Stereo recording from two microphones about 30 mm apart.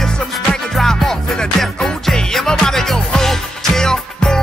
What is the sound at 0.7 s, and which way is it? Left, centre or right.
Music, centre.